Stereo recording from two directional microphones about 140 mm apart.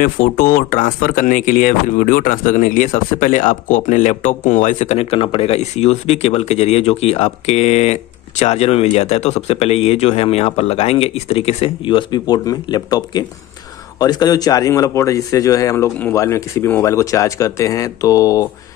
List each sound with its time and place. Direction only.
0.0 s speech: 85° left; by 18.5 s 25° left (ahead or behind)